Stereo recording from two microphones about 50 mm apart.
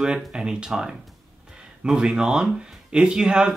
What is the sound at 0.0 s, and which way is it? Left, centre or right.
Speech, centre.